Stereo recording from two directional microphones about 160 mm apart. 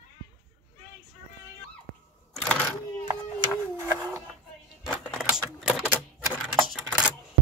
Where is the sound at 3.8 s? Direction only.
15° right (ahead or behind).